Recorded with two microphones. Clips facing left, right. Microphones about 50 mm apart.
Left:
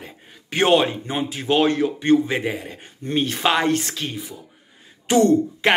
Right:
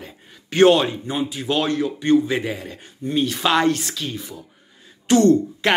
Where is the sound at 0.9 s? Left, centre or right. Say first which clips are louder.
Right 1 dB; left.